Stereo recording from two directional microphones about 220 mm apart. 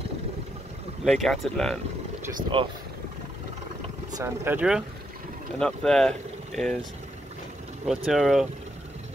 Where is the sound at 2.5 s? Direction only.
20° right (ahead or behind).